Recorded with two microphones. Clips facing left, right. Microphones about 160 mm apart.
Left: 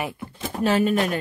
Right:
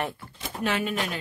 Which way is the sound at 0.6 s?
40° left (ahead or behind).